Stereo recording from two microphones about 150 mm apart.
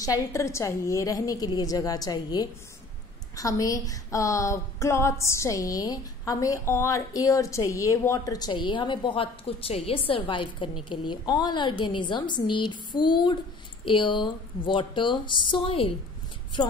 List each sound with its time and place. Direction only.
0.3 s a woman's voice: 20° left (ahead or behind)